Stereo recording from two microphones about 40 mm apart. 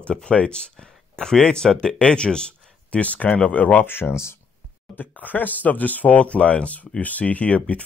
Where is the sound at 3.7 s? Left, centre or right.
Left.